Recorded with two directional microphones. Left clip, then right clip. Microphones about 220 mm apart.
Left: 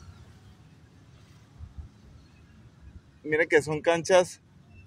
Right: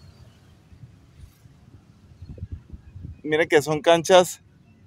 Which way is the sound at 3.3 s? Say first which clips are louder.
Right 4 dB; 30° right (ahead or behind).